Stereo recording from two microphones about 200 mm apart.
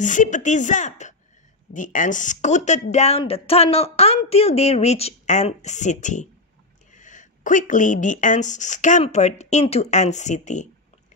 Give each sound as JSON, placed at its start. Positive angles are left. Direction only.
{"t": 0.0, "sound": "speech", "side_deg": 40}